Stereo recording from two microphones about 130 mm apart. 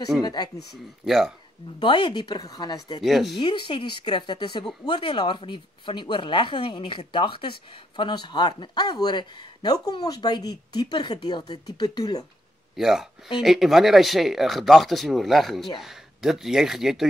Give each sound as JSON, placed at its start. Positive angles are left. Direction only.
{"t": 0.2, "sound": "a woman's voice", "side_deg": 30}
{"t": 1.0, "sound": "speech", "side_deg": 0}
{"t": 1.8, "sound": "a woman's voice", "side_deg": 40}
{"t": 3.0, "sound": "speech", "side_deg": 0}
{"t": 3.3, "sound": "a woman's voice", "side_deg": 40}
{"t": 12.7, "sound": "speech", "side_deg": -5}